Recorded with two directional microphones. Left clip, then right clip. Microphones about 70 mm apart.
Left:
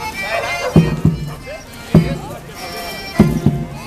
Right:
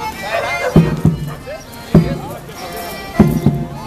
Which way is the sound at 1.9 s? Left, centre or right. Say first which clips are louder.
Right 1 dB; centre.